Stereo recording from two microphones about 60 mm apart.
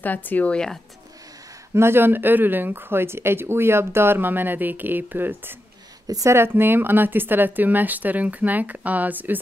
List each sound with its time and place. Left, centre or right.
0.0 s a woman's voice: left
0.5 s speech: centre
1.7 s speech: right
6.0 s speech: right
6.3 s speech: right